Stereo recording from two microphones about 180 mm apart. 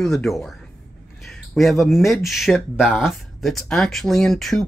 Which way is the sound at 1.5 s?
Centre (ahead or behind).